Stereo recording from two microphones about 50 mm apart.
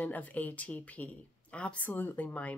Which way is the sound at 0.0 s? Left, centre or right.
Left.